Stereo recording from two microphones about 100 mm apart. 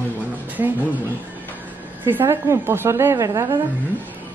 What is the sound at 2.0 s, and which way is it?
A woman's voice, 25° right (ahead or behind).